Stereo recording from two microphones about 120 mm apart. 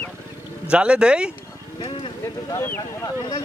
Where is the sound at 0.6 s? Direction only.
10° right (ahead or behind).